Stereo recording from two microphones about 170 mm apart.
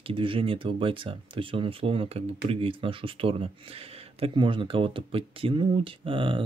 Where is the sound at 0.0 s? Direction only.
30° right (ahead or behind).